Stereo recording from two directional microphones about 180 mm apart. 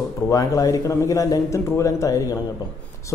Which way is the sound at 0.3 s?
20° left (ahead or behind).